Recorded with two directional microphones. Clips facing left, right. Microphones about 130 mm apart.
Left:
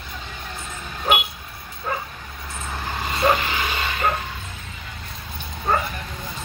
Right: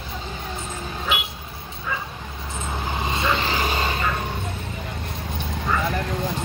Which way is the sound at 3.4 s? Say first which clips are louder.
Right 2 dB; 35° right (ahead or behind).